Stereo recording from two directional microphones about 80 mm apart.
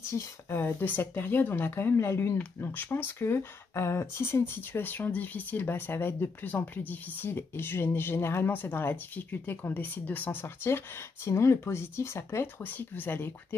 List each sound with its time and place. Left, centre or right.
0.1 s speech: left